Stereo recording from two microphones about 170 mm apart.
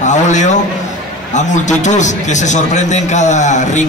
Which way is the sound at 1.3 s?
45° left (ahead or behind).